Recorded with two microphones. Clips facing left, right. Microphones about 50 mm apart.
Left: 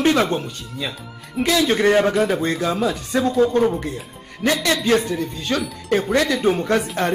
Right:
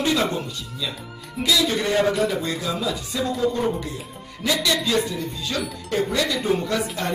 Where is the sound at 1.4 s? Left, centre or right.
Left.